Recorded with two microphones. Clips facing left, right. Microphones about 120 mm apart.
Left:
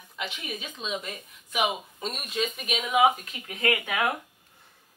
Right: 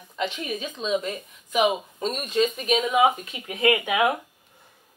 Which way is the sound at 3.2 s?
20° right (ahead or behind).